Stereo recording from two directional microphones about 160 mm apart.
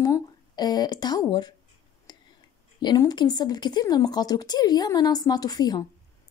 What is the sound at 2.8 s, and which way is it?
A woman's voice, 25° left (ahead or behind).